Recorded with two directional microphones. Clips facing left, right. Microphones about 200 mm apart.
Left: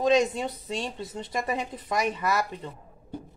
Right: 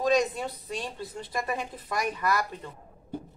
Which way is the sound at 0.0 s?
20° left (ahead or behind).